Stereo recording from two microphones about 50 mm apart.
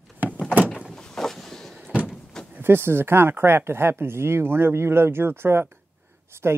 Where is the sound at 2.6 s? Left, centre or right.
Right.